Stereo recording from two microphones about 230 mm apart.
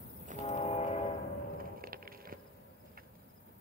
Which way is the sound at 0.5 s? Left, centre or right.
Left.